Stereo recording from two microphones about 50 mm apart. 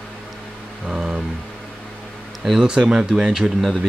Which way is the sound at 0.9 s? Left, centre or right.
Centre.